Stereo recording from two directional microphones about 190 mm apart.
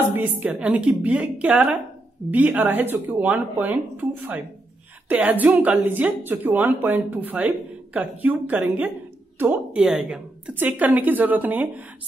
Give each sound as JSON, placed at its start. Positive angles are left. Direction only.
{"t": 0.1, "sound": "a woman's voice", "side_deg": -10}